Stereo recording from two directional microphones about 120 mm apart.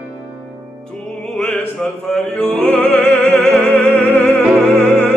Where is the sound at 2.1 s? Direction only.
5° left (ahead or behind).